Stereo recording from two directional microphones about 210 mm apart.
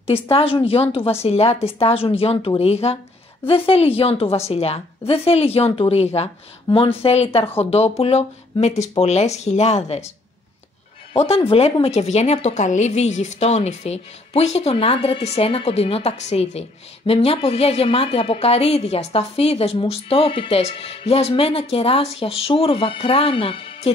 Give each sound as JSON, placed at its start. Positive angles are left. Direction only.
{"t": 0.0, "sound": "a woman's voice", "side_deg": 25}
{"t": 11.1, "sound": "a woman's voice", "side_deg": 30}